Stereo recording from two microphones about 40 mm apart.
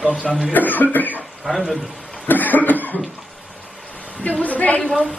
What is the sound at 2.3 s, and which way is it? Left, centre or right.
Cough, left.